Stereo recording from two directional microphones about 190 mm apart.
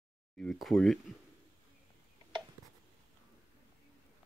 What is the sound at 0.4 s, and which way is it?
Speech, centre (ahead or behind).